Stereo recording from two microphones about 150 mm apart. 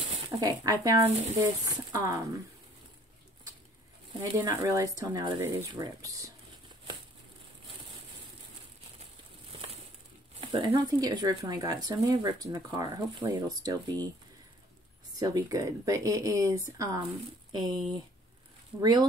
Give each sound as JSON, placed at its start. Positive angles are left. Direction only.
{"t": 0.3, "sound": "speech", "side_deg": -25}
{"t": 4.2, "sound": "speech", "side_deg": -25}
{"t": 10.4, "sound": "speech", "side_deg": -35}
{"t": 15.1, "sound": "speech", "side_deg": -25}